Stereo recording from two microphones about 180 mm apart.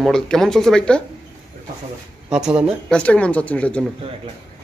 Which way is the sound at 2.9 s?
5° left (ahead or behind).